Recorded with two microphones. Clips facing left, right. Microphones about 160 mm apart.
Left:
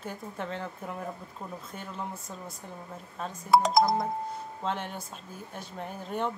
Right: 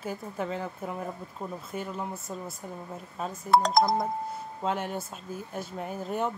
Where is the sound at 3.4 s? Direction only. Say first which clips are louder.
Even; 5° left (ahead or behind).